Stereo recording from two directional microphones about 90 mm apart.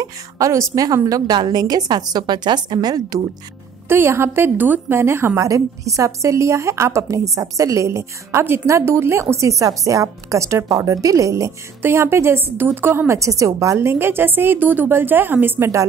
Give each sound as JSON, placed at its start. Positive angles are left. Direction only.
{"t": 0.0, "sound": "a woman's voice", "side_deg": -35}
{"t": 3.9, "sound": "a woman's voice", "side_deg": -25}